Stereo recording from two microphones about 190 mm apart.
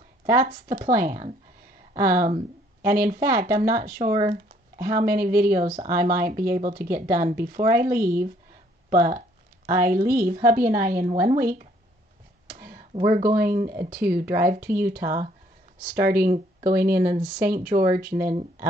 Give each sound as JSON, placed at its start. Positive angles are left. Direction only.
{"t": 0.4, "sound": "speech", "side_deg": -50}
{"t": 12.4, "sound": "a sound", "side_deg": -50}
{"t": 12.9, "sound": "speech", "side_deg": -40}